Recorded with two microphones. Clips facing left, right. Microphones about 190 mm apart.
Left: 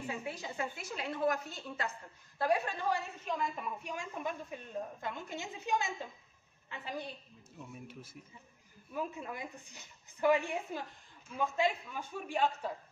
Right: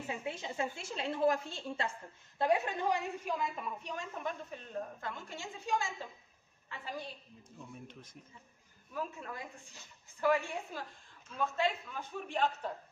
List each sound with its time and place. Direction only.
0.0 s a woman's voice: 25° right (ahead or behind); by 7.1 s 20° left (ahead or behind)
7.5 s a woman's voice: 5° left (ahead or behind)